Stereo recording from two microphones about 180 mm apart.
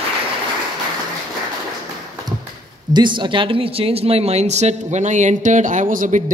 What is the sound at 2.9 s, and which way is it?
Speech, 25° right (ahead or behind).